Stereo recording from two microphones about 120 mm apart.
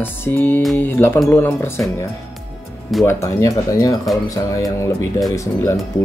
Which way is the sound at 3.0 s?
25° left (ahead or behind).